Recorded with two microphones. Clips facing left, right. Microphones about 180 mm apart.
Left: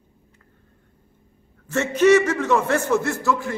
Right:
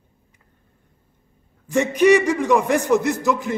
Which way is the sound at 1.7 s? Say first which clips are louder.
Right 1 dB; 15° right (ahead or behind).